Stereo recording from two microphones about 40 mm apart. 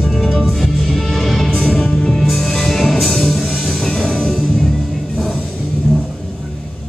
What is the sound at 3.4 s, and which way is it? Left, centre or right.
Music, centre.